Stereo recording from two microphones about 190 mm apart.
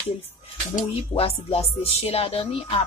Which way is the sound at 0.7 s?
30° left (ahead or behind).